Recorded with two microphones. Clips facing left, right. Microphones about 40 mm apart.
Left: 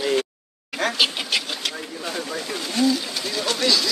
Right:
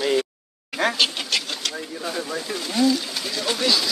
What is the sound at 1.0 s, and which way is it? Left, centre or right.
Vehicle, centre.